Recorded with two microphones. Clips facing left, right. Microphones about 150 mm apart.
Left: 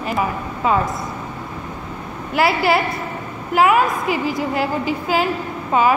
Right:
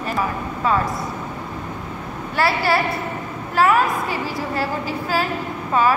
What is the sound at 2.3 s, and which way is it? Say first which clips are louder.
Speech: left 3 dB; 20° left (ahead or behind).